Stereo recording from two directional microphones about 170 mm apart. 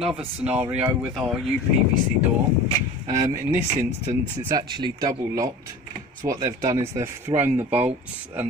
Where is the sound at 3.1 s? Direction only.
20° right (ahead or behind).